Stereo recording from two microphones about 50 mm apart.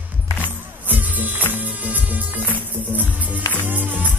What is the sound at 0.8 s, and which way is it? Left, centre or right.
Music, right.